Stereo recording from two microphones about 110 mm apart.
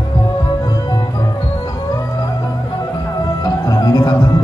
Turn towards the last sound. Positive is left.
turn(degrees=35)  # may be behind; listen again after turning